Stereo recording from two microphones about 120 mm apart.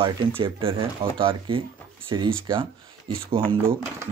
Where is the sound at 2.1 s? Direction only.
35° right (ahead or behind).